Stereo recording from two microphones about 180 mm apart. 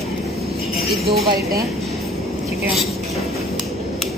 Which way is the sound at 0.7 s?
Centre (ahead or behind).